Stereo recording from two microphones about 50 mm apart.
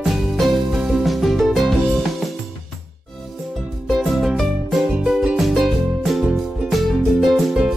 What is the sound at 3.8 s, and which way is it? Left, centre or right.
Music, centre.